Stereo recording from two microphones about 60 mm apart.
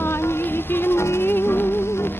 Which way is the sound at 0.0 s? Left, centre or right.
Left.